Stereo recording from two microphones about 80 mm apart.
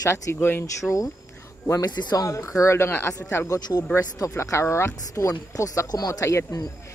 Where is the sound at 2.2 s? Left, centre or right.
Left.